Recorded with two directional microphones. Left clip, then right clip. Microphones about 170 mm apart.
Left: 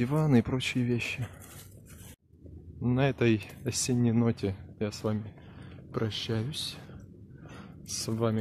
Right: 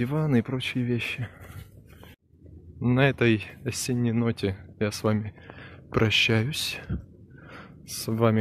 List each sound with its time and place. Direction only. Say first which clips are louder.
0.0 s speech: right 1 dB; 10° left (ahead or behind)
2.8 s speech: right 5 dB; 5° right (ahead or behind)
4.5 s speech: right 5 dB; 5° right (ahead or behind)
5.9 s speech: right 11 dB; 20° right (ahead or behind)
7.5 s gasp: even; centre (ahead or behind)